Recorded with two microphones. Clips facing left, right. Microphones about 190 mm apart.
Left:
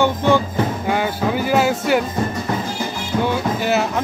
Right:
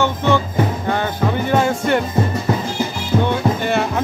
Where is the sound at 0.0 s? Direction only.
10° left (ahead or behind).